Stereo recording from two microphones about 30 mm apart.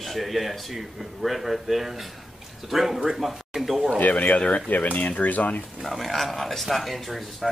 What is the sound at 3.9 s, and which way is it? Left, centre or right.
Speech, left.